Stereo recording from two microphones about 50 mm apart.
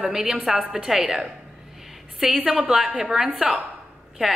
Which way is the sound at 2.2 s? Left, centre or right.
Right.